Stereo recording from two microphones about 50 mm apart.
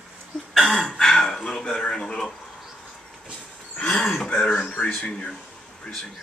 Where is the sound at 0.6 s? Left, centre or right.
Centre.